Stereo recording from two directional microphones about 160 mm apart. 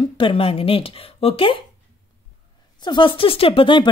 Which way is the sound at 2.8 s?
30° left (ahead or behind).